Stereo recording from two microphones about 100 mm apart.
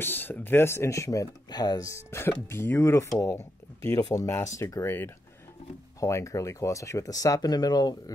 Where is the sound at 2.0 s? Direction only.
25° left (ahead or behind).